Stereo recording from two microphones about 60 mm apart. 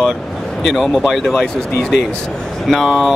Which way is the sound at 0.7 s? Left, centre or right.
Centre.